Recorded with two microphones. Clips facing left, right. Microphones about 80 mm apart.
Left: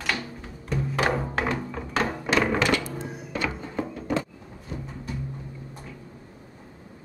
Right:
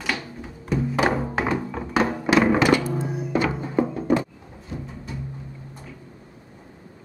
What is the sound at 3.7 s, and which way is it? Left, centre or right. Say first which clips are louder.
Music: right 9 dB; right.